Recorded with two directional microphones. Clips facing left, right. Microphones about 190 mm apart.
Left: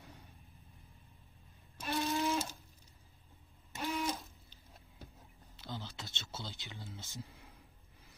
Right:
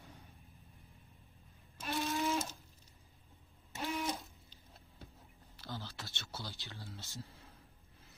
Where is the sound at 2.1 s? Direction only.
Centre (ahead or behind).